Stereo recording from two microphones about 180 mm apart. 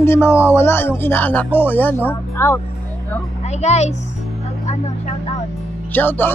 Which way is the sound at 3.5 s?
40° left (ahead or behind).